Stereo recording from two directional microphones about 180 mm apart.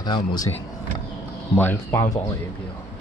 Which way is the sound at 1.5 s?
15° left (ahead or behind).